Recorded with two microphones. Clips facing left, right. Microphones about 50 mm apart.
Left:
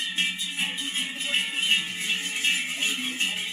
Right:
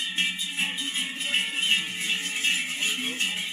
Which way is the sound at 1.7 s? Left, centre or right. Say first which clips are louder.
Left 1 dB; centre.